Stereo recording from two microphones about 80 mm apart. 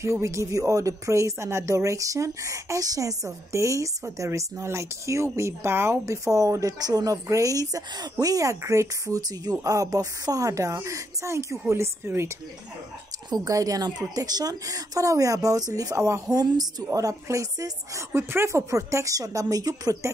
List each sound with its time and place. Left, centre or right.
0.0 s speech: right
13.3 s speech: right
18.1 s speech: right